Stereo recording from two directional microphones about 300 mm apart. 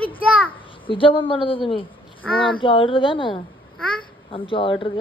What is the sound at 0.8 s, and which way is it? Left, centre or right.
Speech, centre.